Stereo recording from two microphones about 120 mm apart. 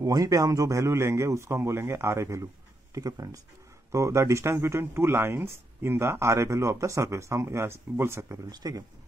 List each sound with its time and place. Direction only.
0.0 s speech: 30° right (ahead or behind)